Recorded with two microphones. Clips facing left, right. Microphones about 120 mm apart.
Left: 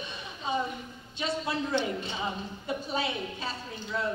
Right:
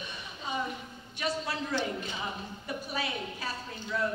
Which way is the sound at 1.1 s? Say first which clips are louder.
Left 2 dB; 25° left (ahead or behind).